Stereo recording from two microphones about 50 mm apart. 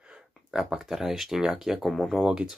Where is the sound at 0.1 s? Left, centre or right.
Centre.